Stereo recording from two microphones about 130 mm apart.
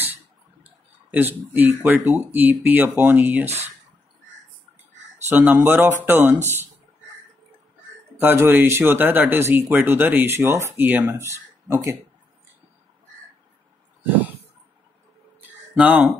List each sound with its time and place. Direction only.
0.7 s speech: 15° right (ahead or behind)
5.3 s speech: 15° right (ahead or behind)
8.2 s speech: 15° right (ahead or behind)
15.7 s speech: 10° right (ahead or behind)